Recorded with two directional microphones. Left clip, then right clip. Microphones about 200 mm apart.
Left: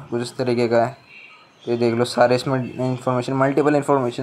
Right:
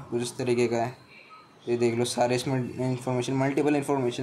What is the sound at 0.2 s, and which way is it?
A man's voice, 20° left (ahead or behind).